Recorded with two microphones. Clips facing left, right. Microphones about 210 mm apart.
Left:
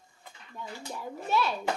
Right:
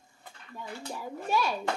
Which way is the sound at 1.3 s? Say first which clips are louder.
Even; 10° right (ahead or behind).